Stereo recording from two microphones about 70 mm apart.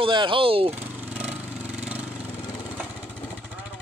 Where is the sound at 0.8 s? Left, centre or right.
Centre.